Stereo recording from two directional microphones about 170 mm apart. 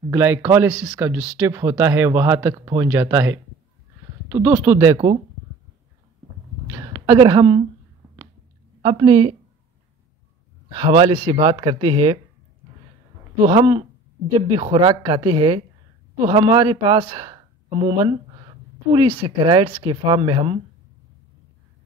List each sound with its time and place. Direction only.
0.1 s speech: 10° right (ahead or behind)
4.9 s speech: 35° right (ahead or behind)
6.7 s a woman's voice: 20° right (ahead or behind)
8.8 s speech: 30° right (ahead or behind)
10.8 s speech: 30° right (ahead or behind)
13.4 s speech: 30° right (ahead or behind)